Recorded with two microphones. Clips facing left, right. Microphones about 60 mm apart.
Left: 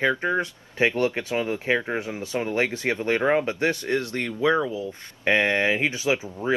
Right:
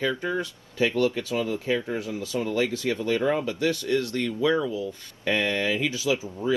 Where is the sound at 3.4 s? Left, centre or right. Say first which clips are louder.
Left 1 dB; left.